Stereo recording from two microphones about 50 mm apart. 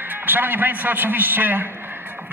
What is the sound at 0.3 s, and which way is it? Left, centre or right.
A man's voice, right.